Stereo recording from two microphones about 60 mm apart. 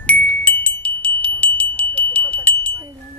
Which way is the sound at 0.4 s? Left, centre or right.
Left.